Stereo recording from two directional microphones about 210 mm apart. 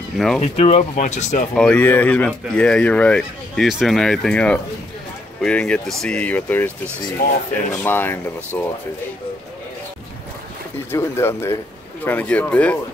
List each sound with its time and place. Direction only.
0.4 s speech: 30° left (ahead or behind)
1.5 s speech: 5° left (ahead or behind)
7.2 s speech: 45° left (ahead or behind)
7.8 s speech: 10° left (ahead or behind)
10.9 s speech: 10° left (ahead or behind)